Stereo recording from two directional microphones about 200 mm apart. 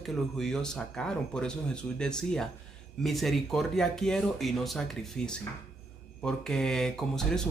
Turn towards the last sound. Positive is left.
turn(degrees=5)  # may be behind; listen again after turning